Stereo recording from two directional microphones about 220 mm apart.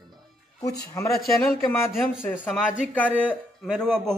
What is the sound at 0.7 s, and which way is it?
Speech, 15° left (ahead or behind).